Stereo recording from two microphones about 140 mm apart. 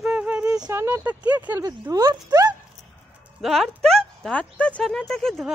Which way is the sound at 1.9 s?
25° right (ahead or behind).